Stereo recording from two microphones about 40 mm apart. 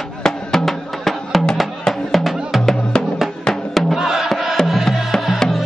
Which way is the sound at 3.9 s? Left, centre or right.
Centre.